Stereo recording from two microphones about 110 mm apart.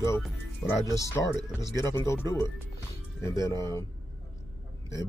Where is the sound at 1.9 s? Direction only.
25° left (ahead or behind).